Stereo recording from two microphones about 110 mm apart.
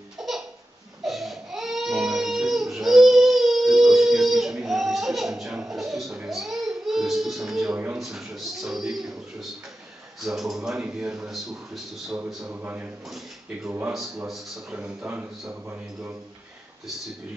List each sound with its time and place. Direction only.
0.2 s laughter: 5° right (ahead or behind)
1.0 s baby cry: centre (ahead or behind)
8.0 s a sound: centre (ahead or behind)
12.3 s a man's voice: 5° right (ahead or behind)
12.5 s a man's voice: 15° right (ahead or behind)
14.2 s a man's voice: 5° right (ahead or behind)